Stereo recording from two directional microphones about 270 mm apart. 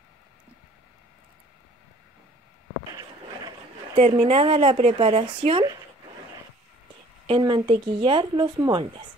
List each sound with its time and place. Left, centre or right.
2.9 s a woman's voice: centre
7.2 s speech: centre